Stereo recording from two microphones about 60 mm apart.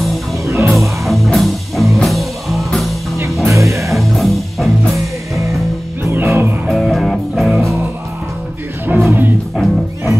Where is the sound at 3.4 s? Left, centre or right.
Right.